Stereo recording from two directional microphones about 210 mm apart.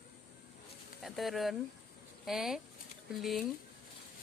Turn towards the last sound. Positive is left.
turn(degrees=0)  # may be behind; listen again after turning